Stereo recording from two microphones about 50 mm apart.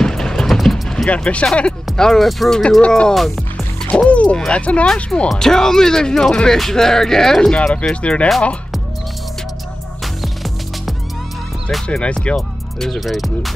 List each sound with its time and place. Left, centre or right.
0.0 s a sound: centre
0.8 s music: centre
1.1 s speech: left
2.0 s speech: centre
4.1 s a sound: left
4.5 s speech: left
5.3 s speech: centre
7.9 s speech: left
10.2 s music: centre
11.9 s speech: centre
12.4 s speech: centre